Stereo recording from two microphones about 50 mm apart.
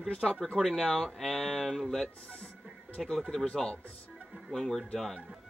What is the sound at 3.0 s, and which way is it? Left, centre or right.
Speech, centre.